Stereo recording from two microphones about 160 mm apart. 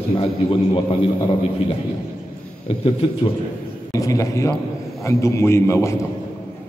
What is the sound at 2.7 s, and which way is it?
Speech, 35° left (ahead or behind).